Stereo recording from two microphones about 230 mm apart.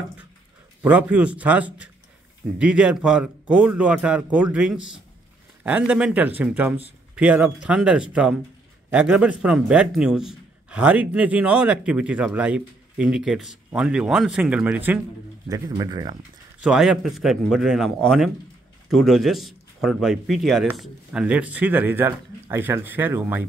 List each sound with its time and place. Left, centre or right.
0.8 s a man's voice: centre
16.6 s a man's voice: centre